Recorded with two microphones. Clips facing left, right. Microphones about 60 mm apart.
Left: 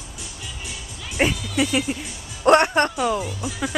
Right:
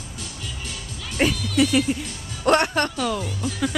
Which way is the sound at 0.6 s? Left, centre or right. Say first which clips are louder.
Right 1 dB; centre.